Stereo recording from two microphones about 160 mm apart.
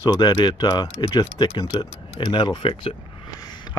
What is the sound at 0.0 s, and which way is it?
Speech, 25° left (ahead or behind).